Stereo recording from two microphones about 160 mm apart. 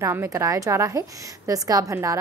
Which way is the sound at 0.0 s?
15° right (ahead or behind).